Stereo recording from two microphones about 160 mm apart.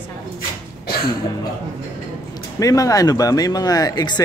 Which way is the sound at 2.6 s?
20° left (ahead or behind).